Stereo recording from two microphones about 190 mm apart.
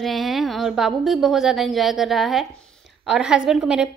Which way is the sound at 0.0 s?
Centre (ahead or behind).